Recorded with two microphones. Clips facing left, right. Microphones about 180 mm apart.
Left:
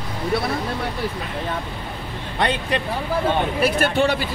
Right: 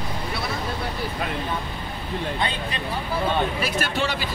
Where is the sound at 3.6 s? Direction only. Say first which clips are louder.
Left 7 dB; 60° left (ahead or behind).